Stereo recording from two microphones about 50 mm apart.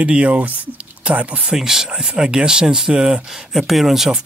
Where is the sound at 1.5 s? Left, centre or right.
Centre.